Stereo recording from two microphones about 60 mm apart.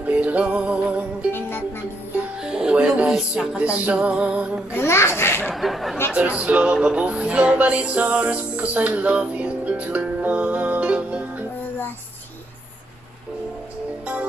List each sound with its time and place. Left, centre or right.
0.0 s music: right
1.3 s music: left
2.4 s music: centre
3.5 s music: right
4.7 s a child's voice: left
5.5 s speech: centre
6.1 s music: right